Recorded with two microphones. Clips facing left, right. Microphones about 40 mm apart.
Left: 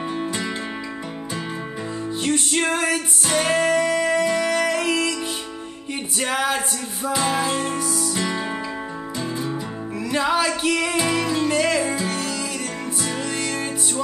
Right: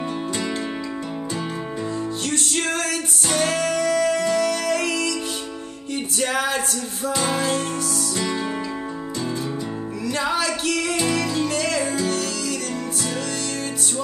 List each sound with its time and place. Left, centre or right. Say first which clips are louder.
2.2 s music: left 5 dB; left
6.4 s music: left 1 dB; centre
10.0 s music: left 3 dB; centre